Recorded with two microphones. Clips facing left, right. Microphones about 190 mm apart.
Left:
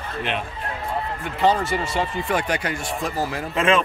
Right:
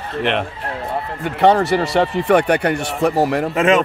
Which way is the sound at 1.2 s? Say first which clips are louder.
Right 7 dB; 70° right (ahead or behind).